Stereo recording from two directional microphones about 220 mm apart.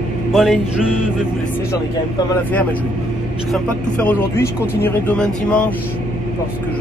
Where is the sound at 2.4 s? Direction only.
5° left (ahead or behind).